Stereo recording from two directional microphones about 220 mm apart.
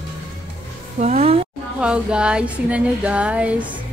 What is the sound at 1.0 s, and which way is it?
Music, 30° right (ahead or behind).